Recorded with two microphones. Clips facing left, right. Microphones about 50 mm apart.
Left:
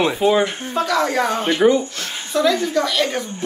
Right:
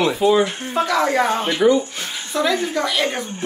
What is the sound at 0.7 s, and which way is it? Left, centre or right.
Speech, centre.